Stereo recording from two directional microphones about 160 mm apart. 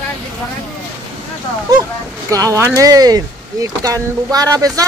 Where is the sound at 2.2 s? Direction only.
20° right (ahead or behind).